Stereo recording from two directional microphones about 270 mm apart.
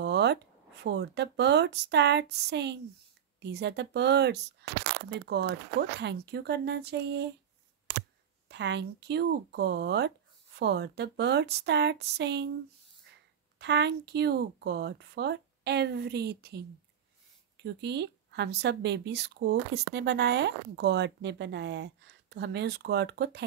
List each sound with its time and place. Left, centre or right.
0.0 s a sound: right
0.8 s speech: right
8.5 s speech: right
13.6 s speech: right
17.6 s speech: right